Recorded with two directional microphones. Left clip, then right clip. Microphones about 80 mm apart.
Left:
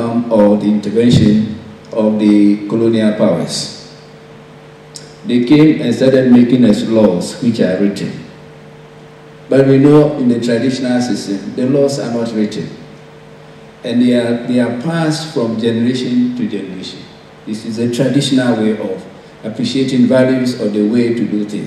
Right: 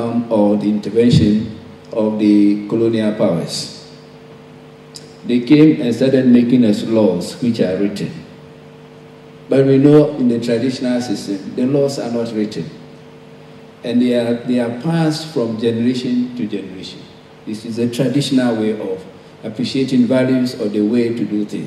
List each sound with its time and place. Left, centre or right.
0.0 s a man's voice: left
5.2 s a man's voice: left
9.5 s a man's voice: left
13.8 s a man's voice: left